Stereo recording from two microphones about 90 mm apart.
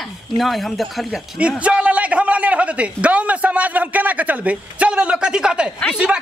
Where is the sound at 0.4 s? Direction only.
Centre (ahead or behind).